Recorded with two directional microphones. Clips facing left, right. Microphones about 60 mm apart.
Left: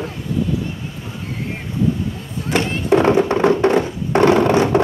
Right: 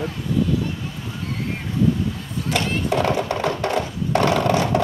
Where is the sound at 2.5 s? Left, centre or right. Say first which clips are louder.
Left 6 dB; left.